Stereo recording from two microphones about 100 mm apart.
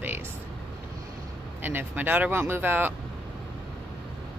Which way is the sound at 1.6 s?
20° right (ahead or behind).